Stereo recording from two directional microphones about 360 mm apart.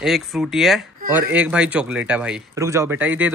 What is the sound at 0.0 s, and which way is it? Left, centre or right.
Speech, centre.